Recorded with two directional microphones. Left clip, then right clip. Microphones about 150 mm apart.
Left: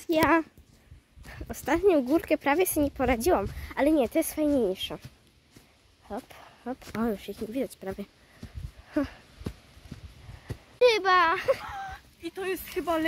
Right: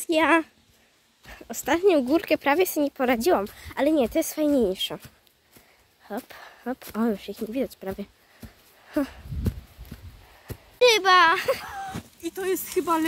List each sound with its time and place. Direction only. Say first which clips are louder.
0.0 s speech: right 3 dB; centre (ahead or behind)
3.5 s speech: right 2 dB; 10° left (ahead or behind); by 5.1 s 5° right (ahead or behind)
6.0 s speech: right 3 dB; 20° right (ahead or behind)
6.9 s speech: right 3 dB; centre (ahead or behind)
8.8 s a sound: right 3 dB; 5° right (ahead or behind)
11.6 s sheep: right 3 dB; 25° right (ahead or behind)
12.7 s speech: right 4 dB; 5° right (ahead or behind)